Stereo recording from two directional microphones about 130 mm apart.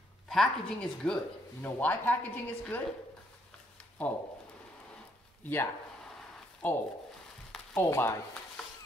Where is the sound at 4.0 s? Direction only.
10° left (ahead or behind).